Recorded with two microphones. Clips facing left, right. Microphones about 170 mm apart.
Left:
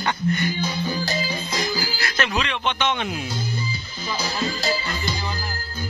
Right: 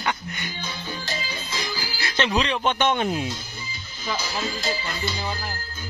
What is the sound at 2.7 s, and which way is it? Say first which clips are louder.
Speech: right 3 dB; 45° right (ahead or behind).